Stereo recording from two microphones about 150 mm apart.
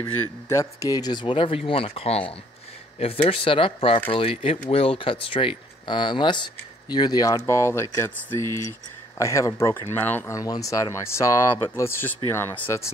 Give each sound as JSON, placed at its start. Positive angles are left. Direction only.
{"t": 0.0, "sound": "speech", "side_deg": 20}